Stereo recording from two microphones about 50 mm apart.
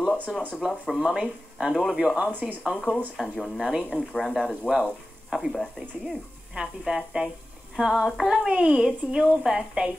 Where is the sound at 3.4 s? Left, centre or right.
Centre.